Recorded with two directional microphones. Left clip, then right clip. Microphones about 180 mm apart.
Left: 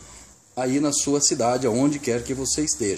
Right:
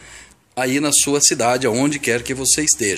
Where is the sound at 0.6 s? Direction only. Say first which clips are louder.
Right 5 dB; centre (ahead or behind).